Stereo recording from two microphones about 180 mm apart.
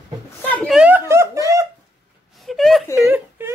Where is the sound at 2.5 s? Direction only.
Centre (ahead or behind).